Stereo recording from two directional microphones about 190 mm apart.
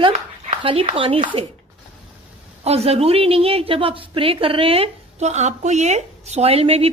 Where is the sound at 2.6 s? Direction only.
35° right (ahead or behind).